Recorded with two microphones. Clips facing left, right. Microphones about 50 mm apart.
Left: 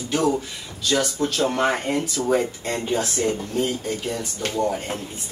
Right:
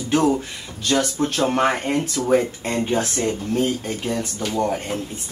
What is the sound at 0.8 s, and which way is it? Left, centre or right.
Speech, right.